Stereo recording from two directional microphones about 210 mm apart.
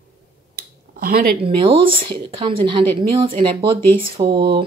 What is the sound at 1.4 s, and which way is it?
Speech, 25° right (ahead or behind).